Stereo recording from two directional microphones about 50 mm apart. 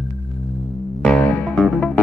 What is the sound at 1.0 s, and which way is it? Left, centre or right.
Music, left.